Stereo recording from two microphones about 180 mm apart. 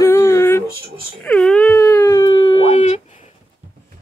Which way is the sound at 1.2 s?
5° left (ahead or behind).